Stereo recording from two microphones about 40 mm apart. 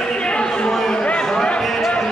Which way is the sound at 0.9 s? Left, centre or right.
Left.